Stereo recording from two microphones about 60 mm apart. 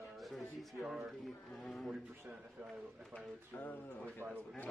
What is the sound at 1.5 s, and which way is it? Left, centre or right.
Speech, centre.